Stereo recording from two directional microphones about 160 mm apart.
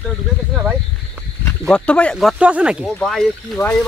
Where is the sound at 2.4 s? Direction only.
10° right (ahead or behind).